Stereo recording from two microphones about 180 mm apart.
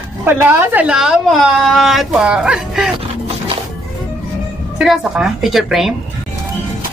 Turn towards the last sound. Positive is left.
turn(degrees=0)  # may be behind; listen again after turning